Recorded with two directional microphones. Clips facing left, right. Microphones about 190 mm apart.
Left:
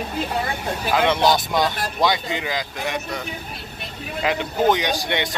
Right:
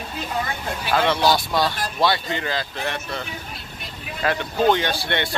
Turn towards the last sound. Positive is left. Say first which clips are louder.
# left 1 dB
turn(degrees=15)  # may be behind; listen again after turning